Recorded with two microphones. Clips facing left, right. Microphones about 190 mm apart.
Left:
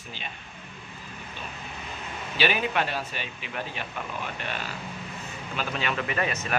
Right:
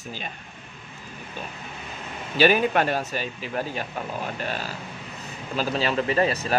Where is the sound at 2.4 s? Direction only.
45° right (ahead or behind).